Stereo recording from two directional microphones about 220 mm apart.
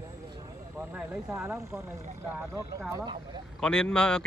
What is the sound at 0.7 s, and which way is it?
Speech, 10° right (ahead or behind).